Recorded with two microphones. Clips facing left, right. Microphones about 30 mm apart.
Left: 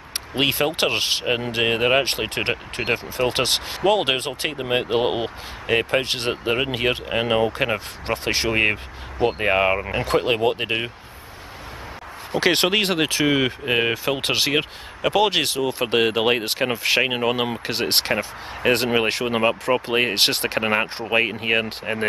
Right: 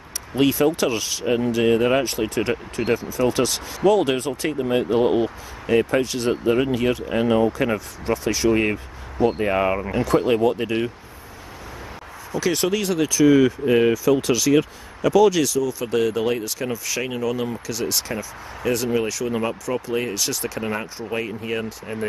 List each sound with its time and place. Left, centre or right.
0.3 s speech: left
12.3 s speech: left